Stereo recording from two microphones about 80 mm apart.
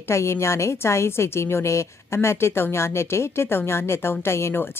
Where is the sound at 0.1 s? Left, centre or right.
Left.